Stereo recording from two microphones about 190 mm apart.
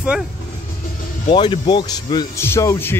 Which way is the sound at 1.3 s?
25° left (ahead or behind).